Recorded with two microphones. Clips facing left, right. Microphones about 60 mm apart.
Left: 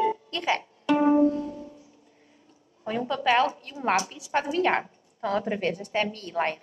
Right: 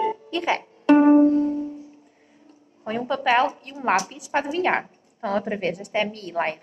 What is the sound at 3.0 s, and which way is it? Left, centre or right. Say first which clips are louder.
Speech: right 3 dB; right.